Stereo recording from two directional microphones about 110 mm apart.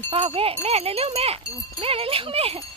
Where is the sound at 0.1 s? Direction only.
60° right (ahead or behind).